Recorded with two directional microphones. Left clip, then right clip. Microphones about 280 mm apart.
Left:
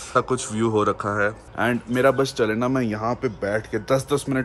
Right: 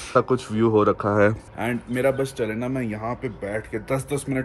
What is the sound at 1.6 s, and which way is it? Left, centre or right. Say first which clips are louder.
Speech: left 4 dB; centre.